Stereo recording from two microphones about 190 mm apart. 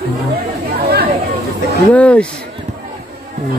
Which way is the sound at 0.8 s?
55° right (ahead or behind).